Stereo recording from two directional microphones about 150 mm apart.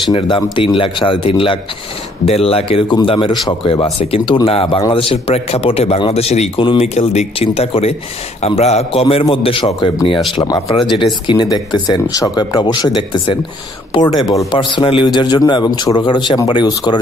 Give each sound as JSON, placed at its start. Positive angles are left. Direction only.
{"t": 0.1, "sound": "a man's voice", "side_deg": 35}
{"t": 4.0, "sound": "a man's voice", "side_deg": 40}
{"t": 7.0, "sound": "a man's voice", "side_deg": 45}